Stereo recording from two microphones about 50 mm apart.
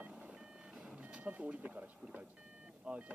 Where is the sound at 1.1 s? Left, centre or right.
Right.